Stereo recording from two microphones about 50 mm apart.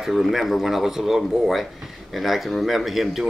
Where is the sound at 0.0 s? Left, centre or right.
Centre.